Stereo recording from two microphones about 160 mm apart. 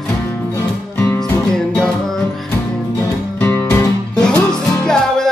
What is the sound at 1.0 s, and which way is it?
Music, 10° left (ahead or behind).